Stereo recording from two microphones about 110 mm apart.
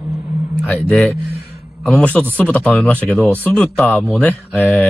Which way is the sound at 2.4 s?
10° left (ahead or behind).